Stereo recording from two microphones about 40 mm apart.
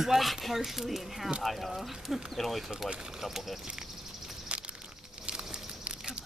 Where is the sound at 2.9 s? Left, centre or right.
Centre.